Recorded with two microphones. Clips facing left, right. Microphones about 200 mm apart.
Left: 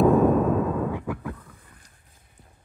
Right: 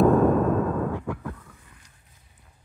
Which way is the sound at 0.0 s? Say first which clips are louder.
Even; 5° left (ahead or behind).